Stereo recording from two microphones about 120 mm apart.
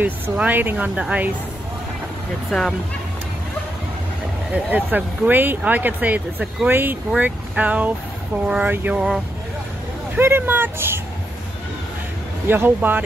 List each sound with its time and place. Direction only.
0.0 s speech: 15° right (ahead or behind)
2.5 s speech: centre (ahead or behind)
4.5 s speech: 15° right (ahead or behind)
10.1 s speech: 20° right (ahead or behind)
12.4 s speech: 15° right (ahead or behind)